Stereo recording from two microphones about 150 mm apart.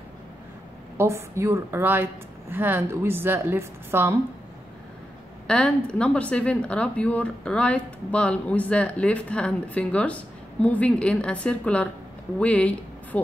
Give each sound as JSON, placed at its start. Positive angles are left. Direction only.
{"t": 0.9, "sound": "a woman's voice", "side_deg": -15}
{"t": 5.5, "sound": "a woman's voice", "side_deg": 5}